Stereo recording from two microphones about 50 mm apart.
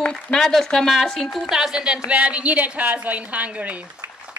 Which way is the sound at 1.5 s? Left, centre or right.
Centre.